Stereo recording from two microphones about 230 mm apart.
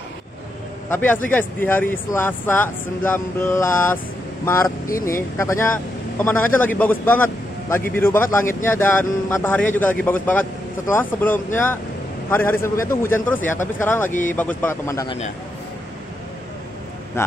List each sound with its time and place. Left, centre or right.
0.8 s speech: centre
14.0 s speech: left
14.3 s speech: centre